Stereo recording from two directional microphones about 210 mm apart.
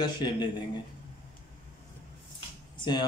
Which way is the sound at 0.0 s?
20° left (ahead or behind).